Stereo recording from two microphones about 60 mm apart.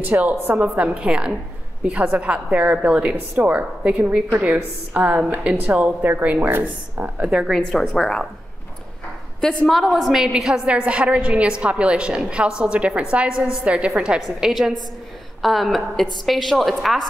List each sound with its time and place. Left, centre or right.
0.0 s a woman's voice: right
7.5 s a woman's voice: centre
9.4 s a woman's voice: centre
9.7 s a woman's voice: centre
14.4 s a woman's voice: centre